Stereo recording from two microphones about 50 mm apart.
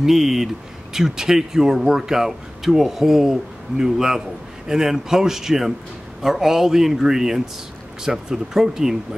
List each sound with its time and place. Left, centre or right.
0.0 s speech: centre